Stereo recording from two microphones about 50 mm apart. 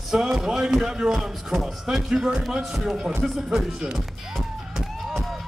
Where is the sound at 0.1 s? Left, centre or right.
Centre.